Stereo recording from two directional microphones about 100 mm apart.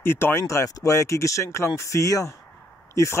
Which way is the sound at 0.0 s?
25° left (ahead or behind).